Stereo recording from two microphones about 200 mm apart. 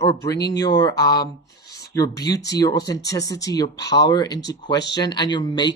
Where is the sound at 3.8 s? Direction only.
55° left (ahead or behind).